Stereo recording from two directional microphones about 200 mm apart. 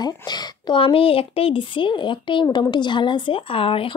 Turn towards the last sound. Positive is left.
turn(degrees=25)  # may be behind; listen again after turning